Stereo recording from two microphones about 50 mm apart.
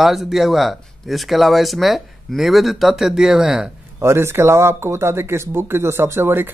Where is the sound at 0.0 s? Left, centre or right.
Centre.